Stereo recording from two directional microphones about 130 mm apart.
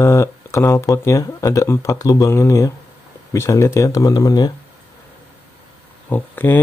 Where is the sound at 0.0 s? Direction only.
20° left (ahead or behind).